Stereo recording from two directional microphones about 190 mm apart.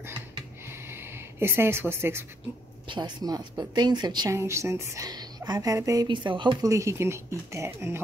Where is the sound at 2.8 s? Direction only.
25° right (ahead or behind).